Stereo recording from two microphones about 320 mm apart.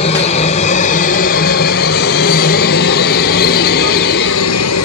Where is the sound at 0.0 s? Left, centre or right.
Centre.